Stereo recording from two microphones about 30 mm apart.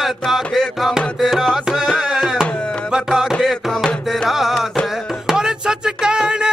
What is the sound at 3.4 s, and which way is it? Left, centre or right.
Music, centre.